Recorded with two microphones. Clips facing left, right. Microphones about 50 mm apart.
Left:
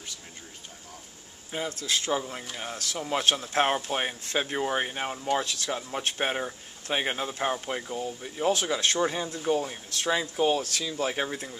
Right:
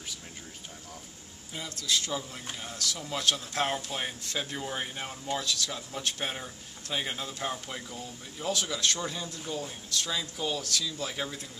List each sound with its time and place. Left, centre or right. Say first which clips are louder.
1.5 s speech: left 3 dB; left